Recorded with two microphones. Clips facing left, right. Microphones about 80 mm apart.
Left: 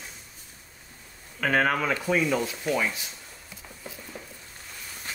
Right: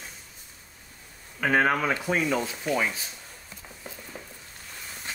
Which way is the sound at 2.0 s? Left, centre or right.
Right.